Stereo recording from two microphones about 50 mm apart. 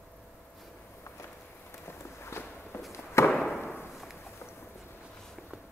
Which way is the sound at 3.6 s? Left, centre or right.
Left.